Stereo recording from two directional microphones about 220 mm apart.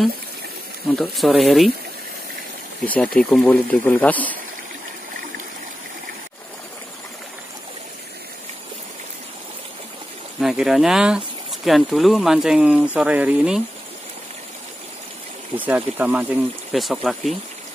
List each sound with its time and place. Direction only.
0.9 s speech: centre (ahead or behind)
2.8 s speech: 5° left (ahead or behind)
10.4 s speech: centre (ahead or behind)
15.5 s speech: 5° right (ahead or behind)